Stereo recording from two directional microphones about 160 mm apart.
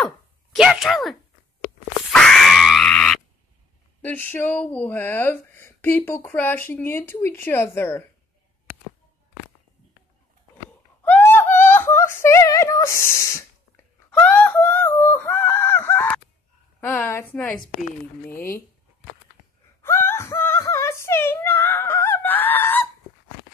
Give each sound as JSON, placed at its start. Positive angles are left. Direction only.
{"t": 0.0, "sound": "a sound", "side_deg": 0}
{"t": 2.0, "sound": "screaming", "side_deg": 0}
{"t": 4.0, "sound": "speech", "side_deg": 10}
{"t": 11.1, "sound": "a sound", "side_deg": 15}
{"t": 12.2, "sound": "speech", "side_deg": 20}
{"t": 14.1, "sound": "wail", "side_deg": 5}
{"t": 16.8, "sound": "speech", "side_deg": 10}
{"t": 19.8, "sound": "whimper", "side_deg": 15}